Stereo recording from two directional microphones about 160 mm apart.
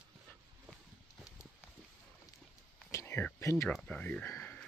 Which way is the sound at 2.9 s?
15° left (ahead or behind).